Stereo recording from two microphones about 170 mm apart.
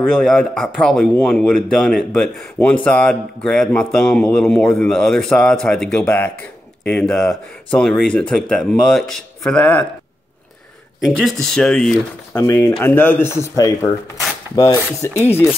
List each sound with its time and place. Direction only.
0.0 s speech: 5° left (ahead or behind)
11.1 s speech: centre (ahead or behind)